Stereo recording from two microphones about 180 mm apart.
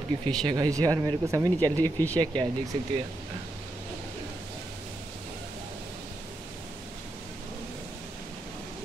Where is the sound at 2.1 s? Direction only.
25° right (ahead or behind).